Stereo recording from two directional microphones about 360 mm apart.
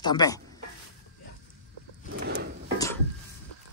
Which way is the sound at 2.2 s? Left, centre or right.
Right.